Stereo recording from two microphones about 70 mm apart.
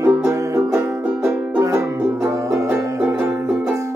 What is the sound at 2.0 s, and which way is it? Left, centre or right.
Music, right.